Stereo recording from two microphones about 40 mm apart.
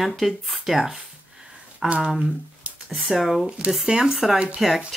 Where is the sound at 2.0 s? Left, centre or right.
Centre.